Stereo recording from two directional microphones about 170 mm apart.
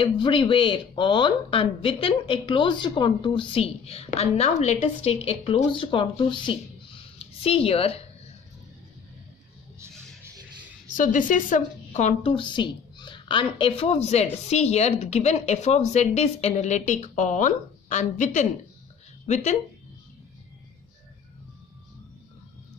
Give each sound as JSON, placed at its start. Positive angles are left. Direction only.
{"t": 0.0, "sound": "a woman's voice", "side_deg": 30}
{"t": 11.0, "sound": "a woman's voice", "side_deg": 50}